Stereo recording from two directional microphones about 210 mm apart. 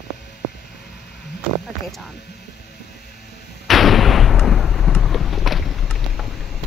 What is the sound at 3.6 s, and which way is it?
Artillery fire, centre (ahead or behind).